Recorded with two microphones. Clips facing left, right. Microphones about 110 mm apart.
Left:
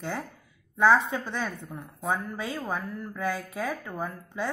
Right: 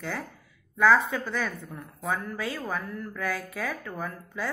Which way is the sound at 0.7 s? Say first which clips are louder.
Even; 25° left (ahead or behind).